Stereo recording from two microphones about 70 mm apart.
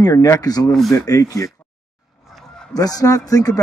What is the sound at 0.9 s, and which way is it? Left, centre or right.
Speech, left.